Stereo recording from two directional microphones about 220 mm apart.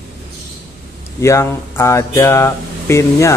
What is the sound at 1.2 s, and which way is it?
Speech, 10° left (ahead or behind).